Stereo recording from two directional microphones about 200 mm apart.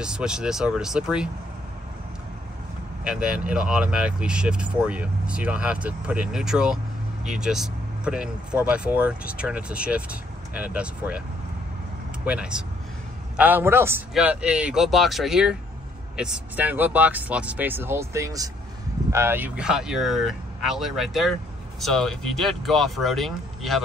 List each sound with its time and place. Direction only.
0.0 s speech: 5° right (ahead or behind)
3.0 s speech: 5° right (ahead or behind)
12.3 s speech: 5° right (ahead or behind)